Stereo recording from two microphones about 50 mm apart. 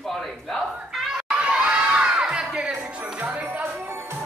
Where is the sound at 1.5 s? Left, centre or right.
Centre.